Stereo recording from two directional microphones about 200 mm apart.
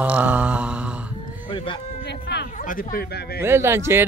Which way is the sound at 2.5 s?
40° left (ahead or behind).